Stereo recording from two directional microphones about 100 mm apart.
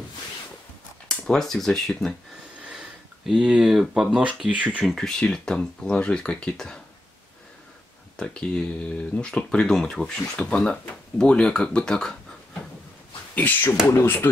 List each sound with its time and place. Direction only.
1.0 s speech: 5° left (ahead or behind)
2.6 s speech: 10° right (ahead or behind)
4.8 s speech: 5° left (ahead or behind)
8.2 s speech: 10° left (ahead or behind)
13.3 s speech: 20° left (ahead or behind)